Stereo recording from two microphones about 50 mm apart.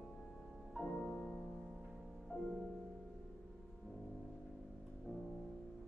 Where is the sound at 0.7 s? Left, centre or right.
Centre.